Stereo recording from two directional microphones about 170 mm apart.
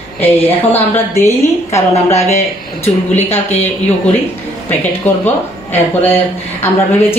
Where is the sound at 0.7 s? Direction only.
15° left (ahead or behind).